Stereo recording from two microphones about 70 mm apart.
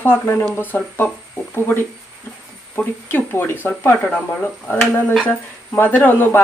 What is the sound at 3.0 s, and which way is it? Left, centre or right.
Speech, left.